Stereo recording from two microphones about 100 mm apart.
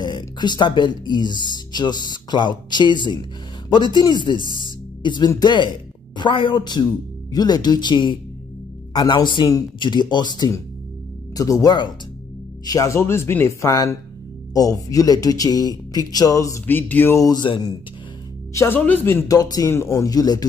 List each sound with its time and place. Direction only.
0.0 s speech: 50° left (ahead or behind)
4.6 s music: 50° left (ahead or behind)
5.4 s speech: 50° left (ahead or behind); by 13.7 s 25° left (ahead or behind)
14.5 s speech: 40° left (ahead or behind)
16.6 s speech: 20° left (ahead or behind)
17.2 s speech: 40° left (ahead or behind)
18.5 s speech: 30° left (ahead or behind)
19.3 s speech: 40° left (ahead or behind)
19.7 s speech: 25° left (ahead or behind)